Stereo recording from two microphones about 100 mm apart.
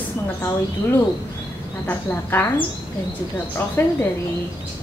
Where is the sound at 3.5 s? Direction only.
20° left (ahead or behind).